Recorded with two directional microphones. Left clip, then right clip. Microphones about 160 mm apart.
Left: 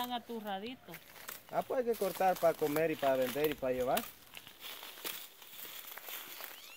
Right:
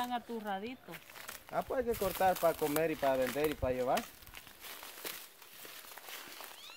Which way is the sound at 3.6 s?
55° left (ahead or behind).